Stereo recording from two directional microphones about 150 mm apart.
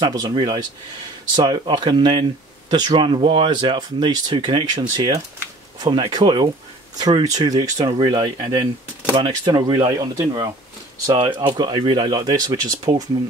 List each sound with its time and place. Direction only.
0.0 s speech: 25° right (ahead or behind)